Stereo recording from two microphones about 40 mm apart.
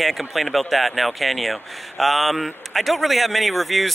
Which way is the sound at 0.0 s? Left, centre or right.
Centre.